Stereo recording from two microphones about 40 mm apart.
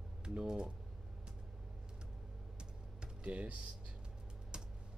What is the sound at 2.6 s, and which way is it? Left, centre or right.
Typing, right.